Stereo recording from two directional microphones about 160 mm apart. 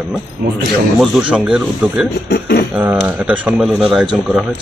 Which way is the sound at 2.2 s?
90° left.